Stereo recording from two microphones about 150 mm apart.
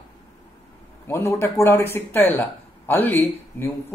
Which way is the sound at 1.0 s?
15° left (ahead or behind).